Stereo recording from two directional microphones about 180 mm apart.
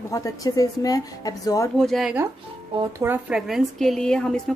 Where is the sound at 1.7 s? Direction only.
Centre (ahead or behind).